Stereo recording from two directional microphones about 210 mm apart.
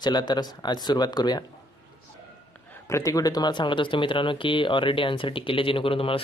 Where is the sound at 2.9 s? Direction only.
15° left (ahead or behind).